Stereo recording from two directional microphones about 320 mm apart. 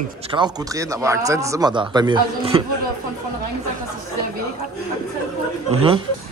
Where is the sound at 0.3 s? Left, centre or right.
Centre.